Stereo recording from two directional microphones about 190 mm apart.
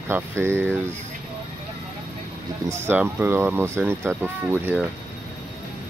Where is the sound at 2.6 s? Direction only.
10° right (ahead or behind).